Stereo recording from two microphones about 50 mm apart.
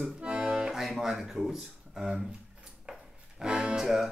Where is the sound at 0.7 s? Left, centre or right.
Centre.